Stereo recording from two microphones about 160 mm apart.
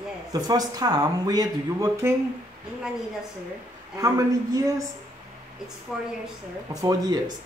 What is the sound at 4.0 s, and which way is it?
Speech, 20° right (ahead or behind).